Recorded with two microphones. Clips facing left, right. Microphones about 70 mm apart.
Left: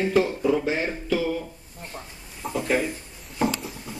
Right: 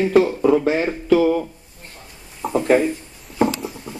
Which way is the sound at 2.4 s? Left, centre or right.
Right.